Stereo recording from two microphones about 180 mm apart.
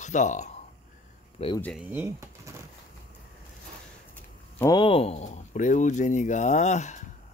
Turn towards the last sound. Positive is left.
turn(degrees=40)  # may be behind; listen again after turning